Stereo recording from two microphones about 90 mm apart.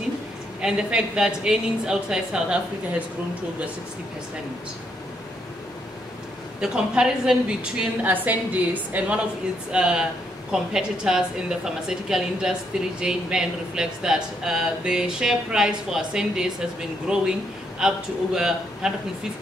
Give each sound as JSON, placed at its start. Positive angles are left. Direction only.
{"t": 0.6, "sound": "speech", "side_deg": -10}
{"t": 6.6, "sound": "speech", "side_deg": -10}